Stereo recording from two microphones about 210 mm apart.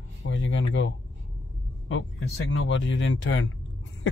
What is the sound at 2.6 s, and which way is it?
Speech, 65° left (ahead or behind).